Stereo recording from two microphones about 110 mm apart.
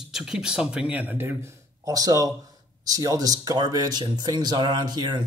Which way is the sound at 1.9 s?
30° right (ahead or behind).